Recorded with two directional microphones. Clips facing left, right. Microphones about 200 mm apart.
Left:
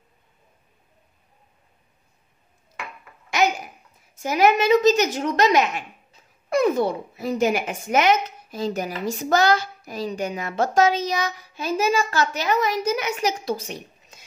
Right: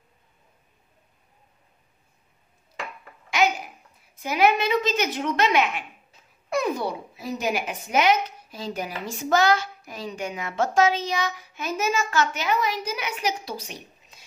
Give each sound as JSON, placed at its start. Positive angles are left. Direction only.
{"t": 3.3, "sound": "babbling", "side_deg": 45}
{"t": 4.1, "sound": "a woman's voice", "side_deg": 45}